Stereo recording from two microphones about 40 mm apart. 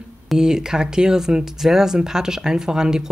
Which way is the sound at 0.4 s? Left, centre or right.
Centre.